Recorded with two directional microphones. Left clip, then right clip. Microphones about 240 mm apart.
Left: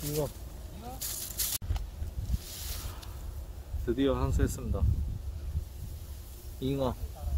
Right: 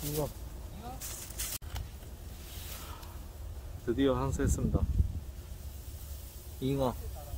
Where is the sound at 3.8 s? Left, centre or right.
Centre.